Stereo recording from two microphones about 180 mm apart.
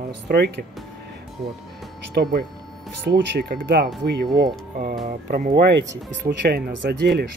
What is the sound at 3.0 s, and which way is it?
Speech, 65° right (ahead or behind).